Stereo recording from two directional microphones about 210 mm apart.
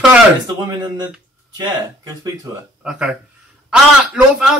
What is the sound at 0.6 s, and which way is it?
Speech, 20° right (ahead or behind).